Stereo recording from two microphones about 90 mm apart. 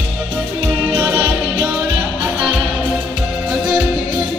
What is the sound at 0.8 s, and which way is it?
Music, 20° right (ahead or behind).